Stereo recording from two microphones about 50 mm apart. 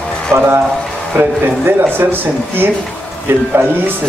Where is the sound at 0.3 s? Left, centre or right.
Right.